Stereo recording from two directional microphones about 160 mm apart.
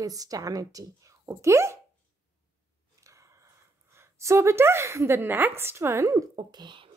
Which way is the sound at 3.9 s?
20° right (ahead or behind).